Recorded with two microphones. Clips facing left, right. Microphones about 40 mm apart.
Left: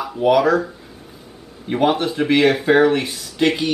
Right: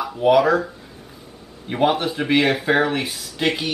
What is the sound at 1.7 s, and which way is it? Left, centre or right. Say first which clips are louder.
Speech: left 2 dB; centre.